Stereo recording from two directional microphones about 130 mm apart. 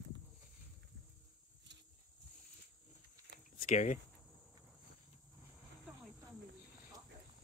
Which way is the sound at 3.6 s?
70° left (ahead or behind).